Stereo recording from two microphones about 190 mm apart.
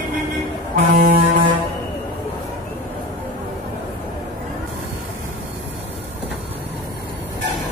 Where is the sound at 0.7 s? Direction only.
45° right (ahead or behind).